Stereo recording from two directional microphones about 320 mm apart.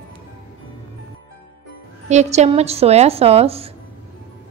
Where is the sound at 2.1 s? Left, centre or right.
Right.